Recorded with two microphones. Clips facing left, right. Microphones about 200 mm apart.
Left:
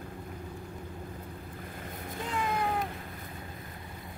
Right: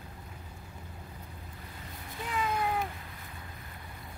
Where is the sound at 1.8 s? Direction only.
50° left (ahead or behind).